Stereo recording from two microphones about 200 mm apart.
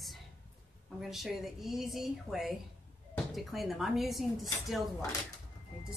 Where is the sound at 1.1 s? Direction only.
Centre (ahead or behind).